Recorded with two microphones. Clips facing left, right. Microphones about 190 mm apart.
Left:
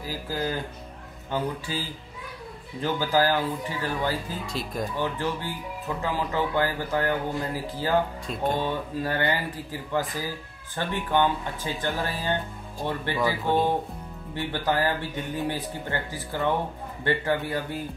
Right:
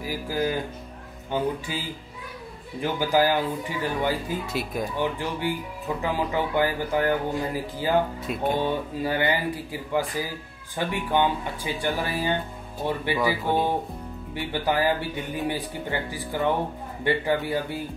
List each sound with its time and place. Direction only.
0.0 s speech: 15° right (ahead or behind)